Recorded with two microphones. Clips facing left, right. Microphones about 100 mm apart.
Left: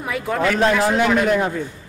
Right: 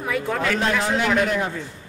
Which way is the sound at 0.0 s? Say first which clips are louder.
Left 3 dB; 5° left (ahead or behind).